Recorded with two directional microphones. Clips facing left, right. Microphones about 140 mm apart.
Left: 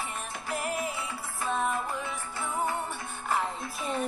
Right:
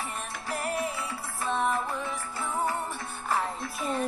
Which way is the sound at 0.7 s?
20° left (ahead or behind).